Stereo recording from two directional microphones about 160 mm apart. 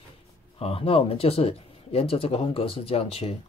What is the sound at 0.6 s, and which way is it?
Speech, 35° left (ahead or behind).